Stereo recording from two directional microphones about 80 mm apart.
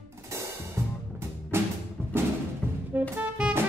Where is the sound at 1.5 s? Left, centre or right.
Right.